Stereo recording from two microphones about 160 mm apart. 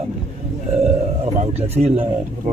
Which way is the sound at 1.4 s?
40° right (ahead or behind).